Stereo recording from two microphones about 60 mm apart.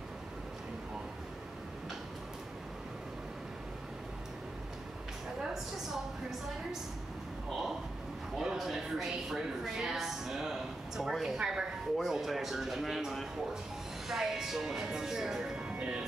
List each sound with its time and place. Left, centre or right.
8.4 s a woman's voice: centre
15.7 s music: centre